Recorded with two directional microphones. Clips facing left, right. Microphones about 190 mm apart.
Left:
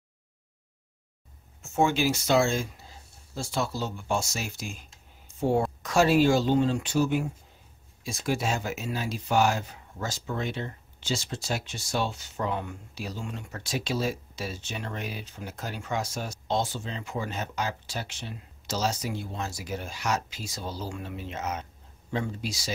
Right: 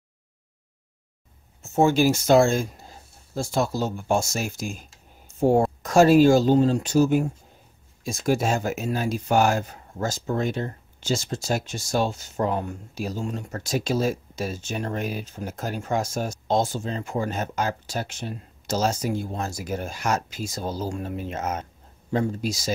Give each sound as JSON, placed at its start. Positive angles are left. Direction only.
{"t": 1.6, "sound": "speech", "side_deg": -40}